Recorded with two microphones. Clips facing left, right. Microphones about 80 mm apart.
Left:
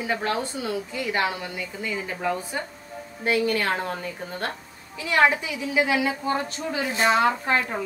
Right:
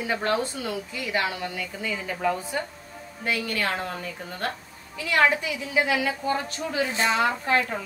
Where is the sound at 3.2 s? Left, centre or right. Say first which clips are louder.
Left 4 dB; left.